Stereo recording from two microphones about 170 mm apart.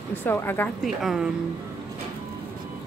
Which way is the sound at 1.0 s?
Centre (ahead or behind).